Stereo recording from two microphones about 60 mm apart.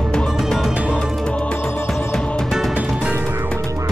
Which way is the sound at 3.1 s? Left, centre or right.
Right.